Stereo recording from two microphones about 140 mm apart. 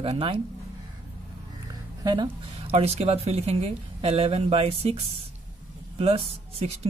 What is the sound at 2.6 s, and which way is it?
Speech, 45° right (ahead or behind).